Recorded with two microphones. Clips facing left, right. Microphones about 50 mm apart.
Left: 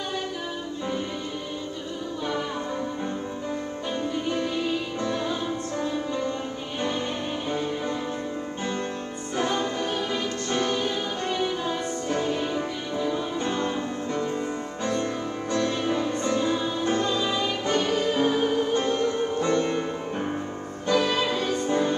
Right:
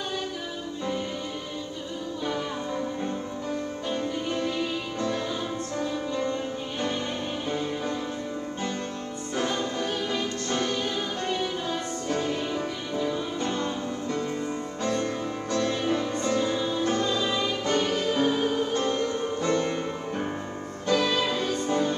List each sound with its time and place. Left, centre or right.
3.9 s music: left
9.4 s music: left
20.8 s music: left